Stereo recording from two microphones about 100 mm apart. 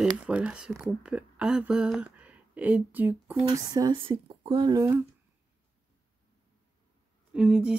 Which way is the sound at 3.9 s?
60° right (ahead or behind).